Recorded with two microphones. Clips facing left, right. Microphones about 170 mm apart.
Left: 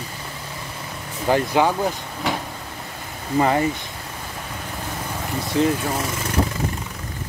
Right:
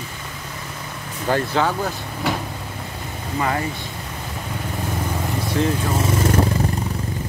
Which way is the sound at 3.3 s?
30° left (ahead or behind).